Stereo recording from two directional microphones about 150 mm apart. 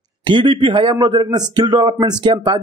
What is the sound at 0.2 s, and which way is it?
Speech, 35° right (ahead or behind).